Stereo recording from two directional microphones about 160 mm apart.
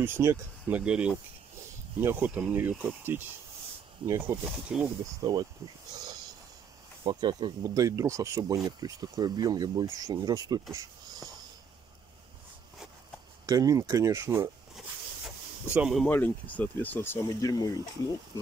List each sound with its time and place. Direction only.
0.0 s speech: 15° right (ahead or behind)
4.7 s speech: 5° right (ahead or behind)
5.2 s speech: 25° right (ahead or behind)
7.1 s speech: 30° right (ahead or behind)
13.5 s speech: 20° right (ahead or behind)
15.7 s speech: 5° right (ahead or behind)
16.1 s speech: 10° left (ahead or behind)